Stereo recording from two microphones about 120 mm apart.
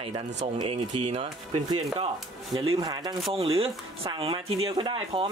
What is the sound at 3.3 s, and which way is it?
Speech, 50° right (ahead or behind).